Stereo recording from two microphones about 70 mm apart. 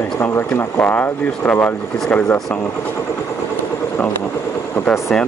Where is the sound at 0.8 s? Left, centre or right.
Left.